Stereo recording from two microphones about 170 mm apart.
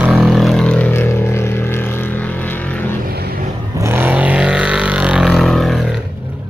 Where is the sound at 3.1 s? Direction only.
65° right (ahead or behind).